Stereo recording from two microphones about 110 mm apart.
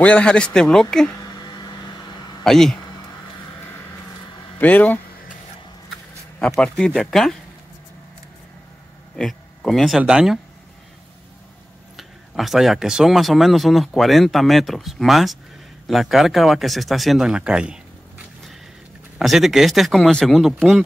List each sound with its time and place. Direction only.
0.0 s a man's voice: 10° left (ahead or behind)
1.1 s a sound: 35° left (ahead or behind)
2.4 s speech: 5° left (ahead or behind)
4.6 s a man's voice: 15° left (ahead or behind)
6.6 s a man's voice: 10° left (ahead or behind)
9.1 s speech: 5° left (ahead or behind)
12.0 s speech: centre (ahead or behind)